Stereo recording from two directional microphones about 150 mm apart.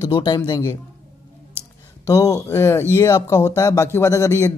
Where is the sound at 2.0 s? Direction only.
20° left (ahead or behind).